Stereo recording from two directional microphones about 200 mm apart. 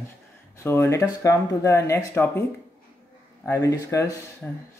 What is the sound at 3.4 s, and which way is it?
Speech, 15° left (ahead or behind).